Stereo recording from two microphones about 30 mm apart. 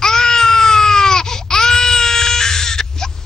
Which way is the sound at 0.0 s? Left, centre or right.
Centre.